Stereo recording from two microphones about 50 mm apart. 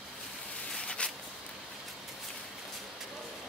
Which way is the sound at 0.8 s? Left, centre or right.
Centre.